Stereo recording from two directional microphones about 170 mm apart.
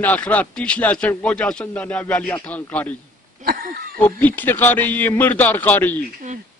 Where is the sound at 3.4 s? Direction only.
60° right (ahead or behind).